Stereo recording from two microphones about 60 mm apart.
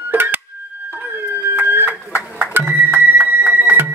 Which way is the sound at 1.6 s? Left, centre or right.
Right.